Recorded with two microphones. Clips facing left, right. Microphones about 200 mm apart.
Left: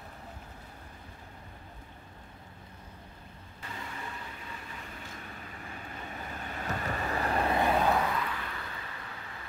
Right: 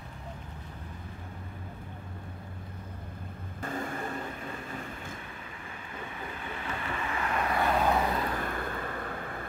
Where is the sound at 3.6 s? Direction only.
50° right (ahead or behind).